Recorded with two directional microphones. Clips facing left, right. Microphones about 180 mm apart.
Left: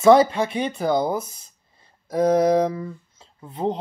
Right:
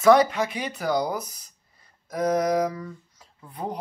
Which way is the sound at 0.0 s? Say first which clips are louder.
Left 3 dB; 25° left (ahead or behind).